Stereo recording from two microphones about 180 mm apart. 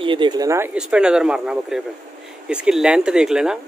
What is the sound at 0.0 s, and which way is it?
Speech, 25° right (ahead or behind).